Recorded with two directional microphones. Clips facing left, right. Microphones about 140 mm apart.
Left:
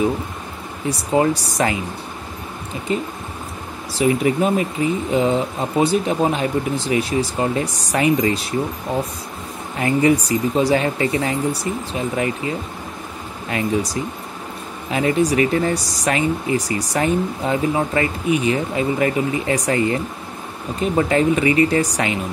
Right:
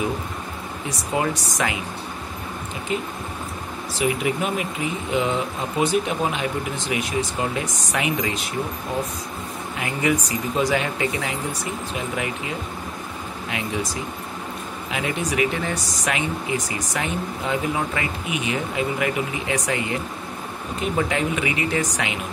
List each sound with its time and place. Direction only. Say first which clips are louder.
0.8 s speech: left 7 dB; 30° left (ahead or behind)
2.9 s speech: left 4 dB; 35° left (ahead or behind)
5.8 s speech: left 4 dB; 35° left (ahead or behind)
9.8 s speech: left 7 dB; 35° left (ahead or behind)
14.9 s speech: left 9 dB; 35° left (ahead or behind)